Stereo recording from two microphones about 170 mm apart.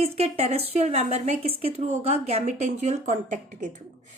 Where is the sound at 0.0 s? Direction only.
35° right (ahead or behind).